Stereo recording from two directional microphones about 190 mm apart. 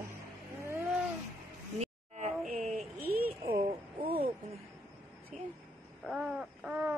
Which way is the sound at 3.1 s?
55° right (ahead or behind).